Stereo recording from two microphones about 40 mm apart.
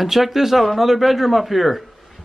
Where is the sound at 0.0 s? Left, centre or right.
Centre.